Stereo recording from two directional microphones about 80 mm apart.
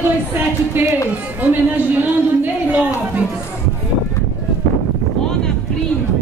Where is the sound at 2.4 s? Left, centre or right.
Right.